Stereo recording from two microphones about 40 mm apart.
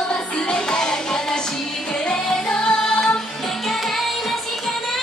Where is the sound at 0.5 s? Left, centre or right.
Centre.